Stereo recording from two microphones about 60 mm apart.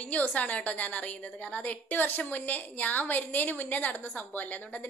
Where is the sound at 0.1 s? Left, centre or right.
Left.